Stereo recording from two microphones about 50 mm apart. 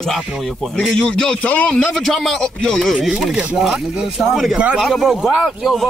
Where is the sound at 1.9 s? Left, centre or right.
Centre.